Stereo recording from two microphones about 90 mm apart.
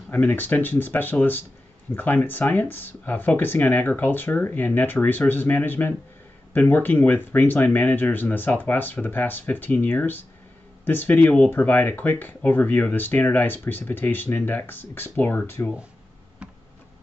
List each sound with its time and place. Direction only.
0.1 s speech: 20° left (ahead or behind)